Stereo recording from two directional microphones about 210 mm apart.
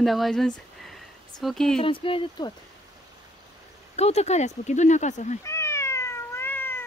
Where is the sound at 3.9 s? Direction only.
30° left (ahead or behind).